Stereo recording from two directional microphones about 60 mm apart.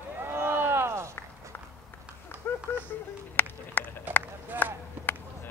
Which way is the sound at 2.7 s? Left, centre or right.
Left.